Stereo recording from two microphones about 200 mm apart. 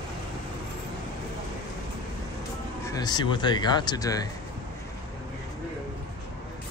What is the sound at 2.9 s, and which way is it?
Speech, 20° left (ahead or behind).